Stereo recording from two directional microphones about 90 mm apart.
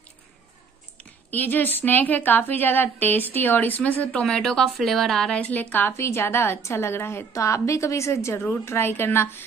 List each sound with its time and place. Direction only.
0.9 s a woman's voice: 20° left (ahead or behind)
4.2 s a woman's voice: 5° left (ahead or behind); by 9.4 s 25° left (ahead or behind)